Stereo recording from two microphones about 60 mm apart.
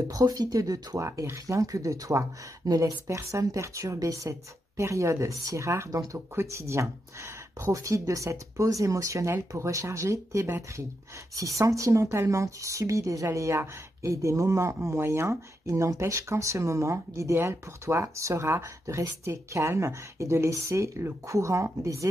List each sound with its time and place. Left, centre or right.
0.1 s speech: right
15.6 s speech: right